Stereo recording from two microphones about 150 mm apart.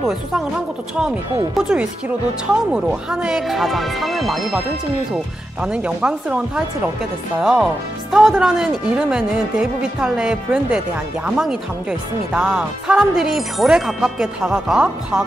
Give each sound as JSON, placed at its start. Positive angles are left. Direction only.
{"t": 0.9, "sound": "speech", "side_deg": -5}